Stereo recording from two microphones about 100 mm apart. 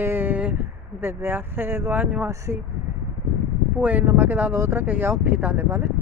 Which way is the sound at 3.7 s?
20° right (ahead or behind).